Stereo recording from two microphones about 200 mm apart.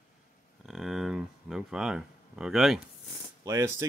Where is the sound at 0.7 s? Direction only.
Centre (ahead or behind).